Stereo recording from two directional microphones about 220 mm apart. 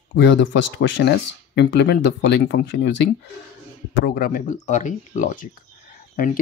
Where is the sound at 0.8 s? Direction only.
50° left (ahead or behind).